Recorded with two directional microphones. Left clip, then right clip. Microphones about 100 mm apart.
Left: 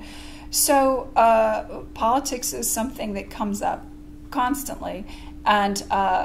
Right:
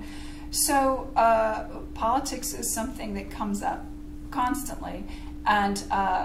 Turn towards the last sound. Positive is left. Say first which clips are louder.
# left 4 dB
turn(degrees=35)  # may be behind; listen again after turning